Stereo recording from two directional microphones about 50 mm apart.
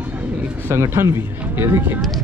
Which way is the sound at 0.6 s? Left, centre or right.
Right.